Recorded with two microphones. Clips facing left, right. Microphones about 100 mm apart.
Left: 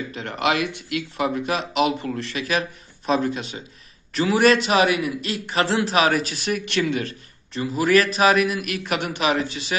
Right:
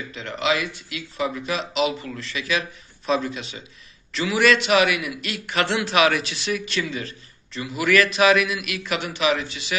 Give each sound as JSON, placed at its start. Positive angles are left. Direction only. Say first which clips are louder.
{"t": 0.1, "sound": "a man's voice", "louder": "even", "side_deg": 50}